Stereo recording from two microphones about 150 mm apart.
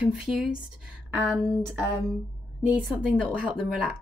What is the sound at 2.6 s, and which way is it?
Speech, 5° right (ahead or behind).